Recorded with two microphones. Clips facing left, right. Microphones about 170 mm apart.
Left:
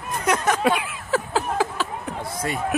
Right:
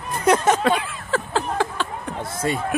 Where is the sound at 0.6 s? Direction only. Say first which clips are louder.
Right 1 dB; 10° left (ahead or behind).